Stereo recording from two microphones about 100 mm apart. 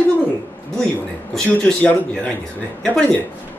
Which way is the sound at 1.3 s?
5° left (ahead or behind).